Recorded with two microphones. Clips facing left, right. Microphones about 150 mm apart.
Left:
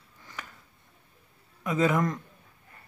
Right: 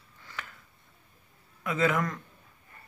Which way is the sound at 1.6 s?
15° left (ahead or behind).